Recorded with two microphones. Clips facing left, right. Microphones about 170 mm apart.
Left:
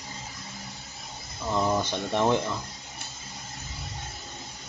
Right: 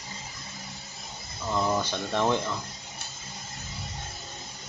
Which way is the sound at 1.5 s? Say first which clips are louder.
Left 1 dB; 10° left (ahead or behind).